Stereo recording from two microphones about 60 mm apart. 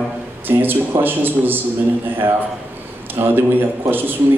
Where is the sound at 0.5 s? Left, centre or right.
Right.